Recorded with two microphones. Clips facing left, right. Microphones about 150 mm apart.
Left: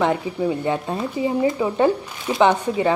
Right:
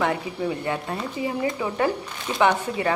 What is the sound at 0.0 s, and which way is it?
A woman's voice, 20° left (ahead or behind).